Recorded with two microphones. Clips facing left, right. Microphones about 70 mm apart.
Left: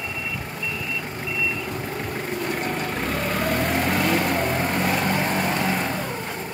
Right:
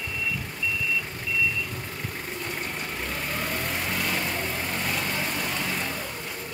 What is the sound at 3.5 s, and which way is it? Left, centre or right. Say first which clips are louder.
Vehicle: left 8 dB; left.